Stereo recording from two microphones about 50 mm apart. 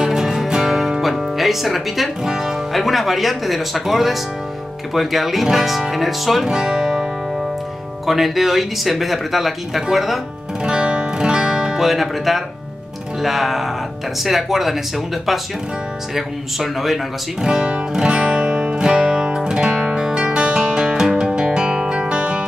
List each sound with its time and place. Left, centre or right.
0.0 s music: centre
4.9 s speech: centre
8.1 s speech: centre
10.6 s music: centre
11.8 s speech: centre
16.2 s speech: centre
17.4 s music: centre